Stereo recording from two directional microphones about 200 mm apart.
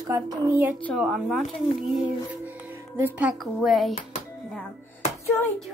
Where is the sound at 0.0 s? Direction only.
15° right (ahead or behind).